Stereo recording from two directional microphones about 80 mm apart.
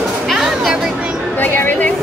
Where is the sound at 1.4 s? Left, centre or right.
Left.